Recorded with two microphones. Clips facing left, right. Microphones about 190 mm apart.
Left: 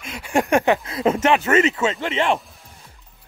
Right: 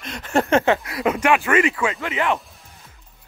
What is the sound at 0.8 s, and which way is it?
Speech, 30° left (ahead or behind).